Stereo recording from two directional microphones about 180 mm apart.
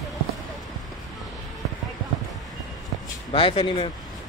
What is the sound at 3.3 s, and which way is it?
Speech, 30° left (ahead or behind).